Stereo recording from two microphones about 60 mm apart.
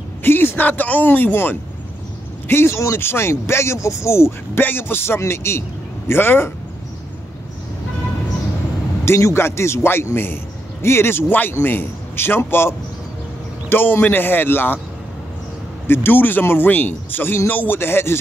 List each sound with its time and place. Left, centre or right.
0.2 s a man's voice: left
4.6 s a man's voice: left
9.0 s a man's voice: left
15.9 s speech: left